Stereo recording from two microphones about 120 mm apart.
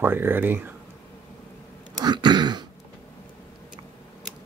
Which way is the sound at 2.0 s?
35° right (ahead or behind).